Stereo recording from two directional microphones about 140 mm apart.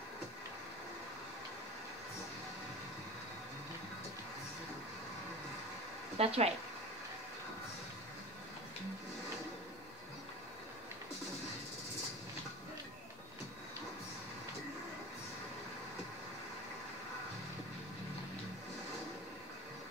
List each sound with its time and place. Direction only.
6.1 s speech: 45° right (ahead or behind)